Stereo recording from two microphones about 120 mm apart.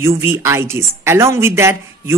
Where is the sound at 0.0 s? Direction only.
20° right (ahead or behind).